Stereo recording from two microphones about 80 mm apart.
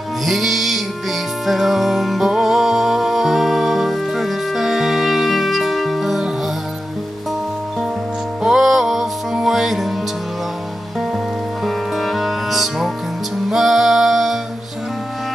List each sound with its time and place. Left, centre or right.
0.2 s music: centre
8.4 s music: centre
11.6 s music: centre